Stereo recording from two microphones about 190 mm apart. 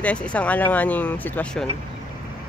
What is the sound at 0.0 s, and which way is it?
Speech, 5° left (ahead or behind).